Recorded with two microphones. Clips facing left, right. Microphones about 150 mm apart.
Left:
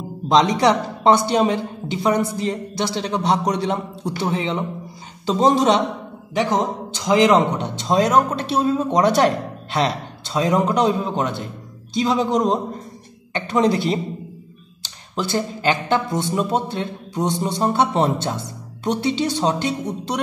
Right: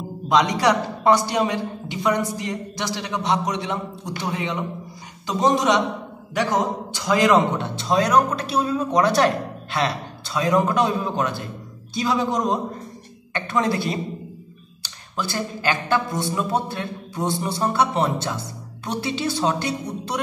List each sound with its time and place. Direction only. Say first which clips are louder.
0.3 s a man's voice: left 3 dB; 25° left (ahead or behind)
6.3 s a man's voice: left 2 dB; 20° left (ahead or behind)